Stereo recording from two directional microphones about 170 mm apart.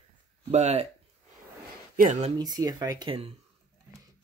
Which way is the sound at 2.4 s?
25° right (ahead or behind).